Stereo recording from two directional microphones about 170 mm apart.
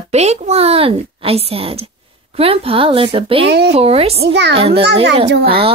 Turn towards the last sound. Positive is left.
turn(degrees=-35)  # may be behind; listen again after turning